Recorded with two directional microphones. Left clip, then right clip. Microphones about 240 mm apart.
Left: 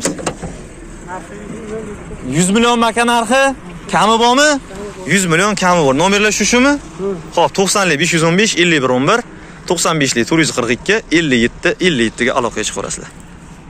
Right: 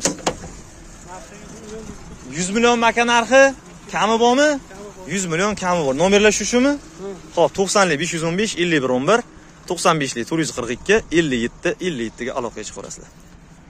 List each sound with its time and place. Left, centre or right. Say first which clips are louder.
2.3 s a man's voice: left 4 dB; left; by 4.6 s centre
5.0 s speech: left 8 dB; centre